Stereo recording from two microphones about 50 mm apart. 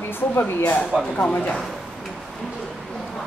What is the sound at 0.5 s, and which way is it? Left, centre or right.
Speech, left.